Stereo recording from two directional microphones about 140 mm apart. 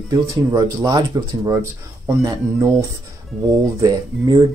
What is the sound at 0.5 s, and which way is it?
Speech, 25° right (ahead or behind).